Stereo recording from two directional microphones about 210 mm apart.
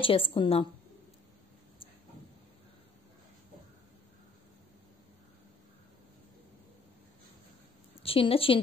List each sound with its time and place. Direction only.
0.0 s a woman's voice: 25° left (ahead or behind)
8.0 s a woman's voice: 25° left (ahead or behind)